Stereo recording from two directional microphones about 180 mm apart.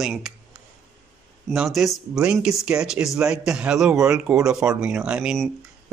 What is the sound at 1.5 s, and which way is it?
Speech, centre (ahead or behind).